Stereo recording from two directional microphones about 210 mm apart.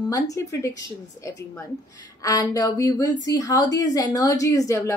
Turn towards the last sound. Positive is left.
turn(degrees=15)  # may be behind; listen again after turning